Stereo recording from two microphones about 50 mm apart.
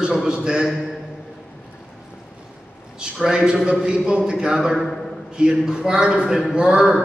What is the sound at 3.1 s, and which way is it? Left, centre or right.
A man's voice, centre.